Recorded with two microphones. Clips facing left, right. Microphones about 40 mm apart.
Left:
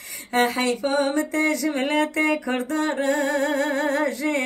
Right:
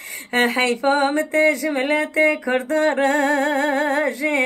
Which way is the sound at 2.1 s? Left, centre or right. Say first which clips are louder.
Right 4 dB; right.